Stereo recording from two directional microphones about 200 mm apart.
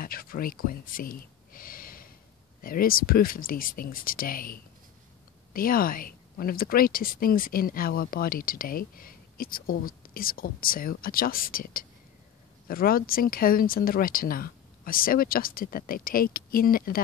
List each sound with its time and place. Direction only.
0.0 s whispering: 45° left (ahead or behind)
2.6 s speech: 45° left (ahead or behind)